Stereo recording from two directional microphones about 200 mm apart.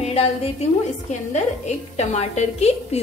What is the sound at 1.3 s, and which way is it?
Speech, 35° left (ahead or behind).